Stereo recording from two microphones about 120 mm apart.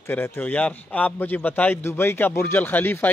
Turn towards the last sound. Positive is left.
turn(degrees=15)  # may be behind; listen again after turning